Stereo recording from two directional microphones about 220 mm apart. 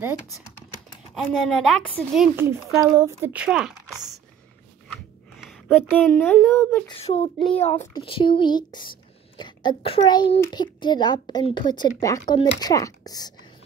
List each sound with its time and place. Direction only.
1.3 s a woman's voice: centre (ahead or behind)
2.4 s speech: 10° right (ahead or behind)
5.4 s speech: centre (ahead or behind)
7.0 s speech: 30° left (ahead or behind)
7.3 s speech: 5° left (ahead or behind)
7.9 s a child's voice: 25° left (ahead or behind)